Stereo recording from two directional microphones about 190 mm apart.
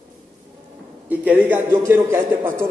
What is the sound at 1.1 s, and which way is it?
A man's voice, 10° right (ahead or behind).